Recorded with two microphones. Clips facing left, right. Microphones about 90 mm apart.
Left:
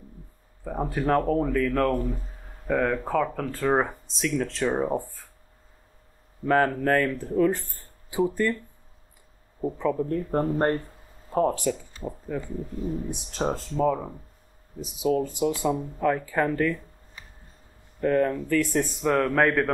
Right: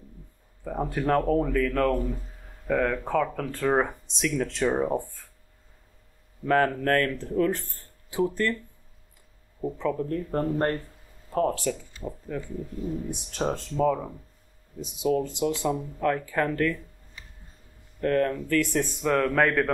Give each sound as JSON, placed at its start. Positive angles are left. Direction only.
{"t": 0.7, "sound": "speech", "side_deg": 5}
{"t": 6.4, "sound": "speech", "side_deg": 10}
{"t": 9.6, "sound": "speech", "side_deg": 10}
{"t": 10.4, "sound": "speech", "side_deg": 30}
{"t": 11.3, "sound": "speech", "side_deg": 15}
{"t": 12.4, "sound": "speech", "side_deg": 35}
{"t": 13.4, "sound": "speech", "side_deg": 10}
{"t": 17.2, "sound": "a sound", "side_deg": 40}
{"t": 18.0, "sound": "speech", "side_deg": 10}